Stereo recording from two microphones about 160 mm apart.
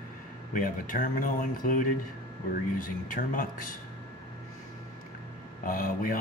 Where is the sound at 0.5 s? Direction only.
60° left (ahead or behind).